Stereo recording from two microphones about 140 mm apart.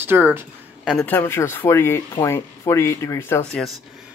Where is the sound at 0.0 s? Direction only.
15° right (ahead or behind).